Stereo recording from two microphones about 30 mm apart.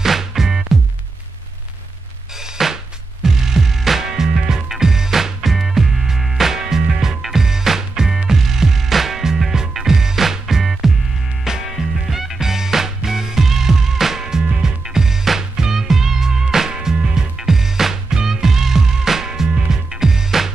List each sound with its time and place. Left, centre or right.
0.0 s music: centre
2.7 s music: centre